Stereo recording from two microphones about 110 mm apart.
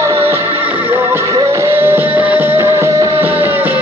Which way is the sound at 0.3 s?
20° right (ahead or behind).